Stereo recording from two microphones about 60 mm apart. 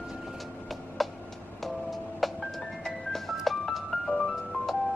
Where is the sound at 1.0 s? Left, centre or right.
Centre.